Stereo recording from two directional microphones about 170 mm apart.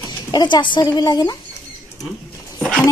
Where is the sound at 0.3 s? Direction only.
25° left (ahead or behind).